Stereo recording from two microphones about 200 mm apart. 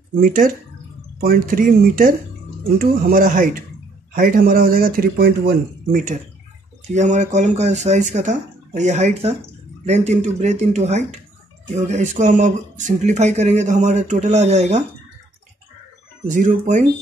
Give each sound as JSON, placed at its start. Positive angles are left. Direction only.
{"t": 0.2, "sound": "speech", "side_deg": -40}
{"t": 16.3, "sound": "speech", "side_deg": -40}